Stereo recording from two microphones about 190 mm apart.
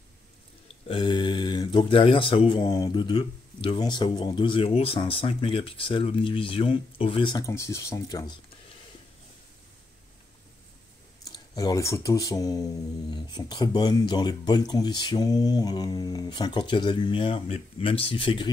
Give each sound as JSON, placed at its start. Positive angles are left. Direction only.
{"t": 0.8, "sound": "speech", "side_deg": 25}
{"t": 11.2, "sound": "speech", "side_deg": 20}